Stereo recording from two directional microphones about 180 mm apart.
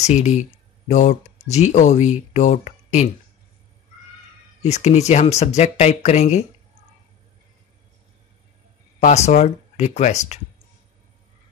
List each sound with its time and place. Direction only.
0.0 s speech: 40° left (ahead or behind)
4.6 s speech: 40° left (ahead or behind)
9.0 s speech: 40° left (ahead or behind)